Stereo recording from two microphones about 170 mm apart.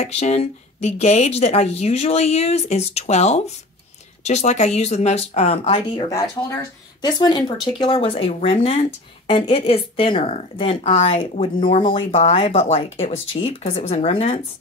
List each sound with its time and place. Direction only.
0.0 s speech: 40° left (ahead or behind)
12.1 s speech: 40° left (ahead or behind)